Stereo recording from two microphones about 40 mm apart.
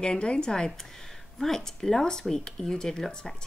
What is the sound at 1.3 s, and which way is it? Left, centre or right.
Speech, centre.